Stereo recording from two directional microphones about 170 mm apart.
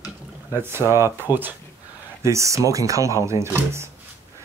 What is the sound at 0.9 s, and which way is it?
Speech, 15° right (ahead or behind).